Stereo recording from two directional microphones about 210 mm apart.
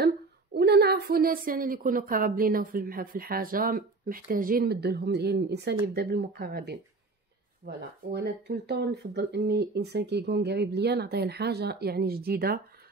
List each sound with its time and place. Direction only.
0.6 s a woman's voice: 50° right (ahead or behind)